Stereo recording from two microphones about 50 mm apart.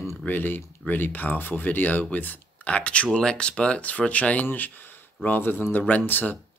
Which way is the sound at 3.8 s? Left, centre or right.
Left.